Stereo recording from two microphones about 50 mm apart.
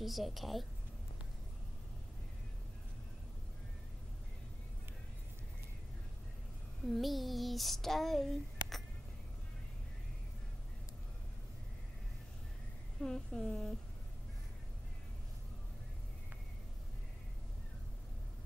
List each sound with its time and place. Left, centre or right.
0.0 s child singing: centre
6.9 s child singing: centre
13.0 s a woman's voice: centre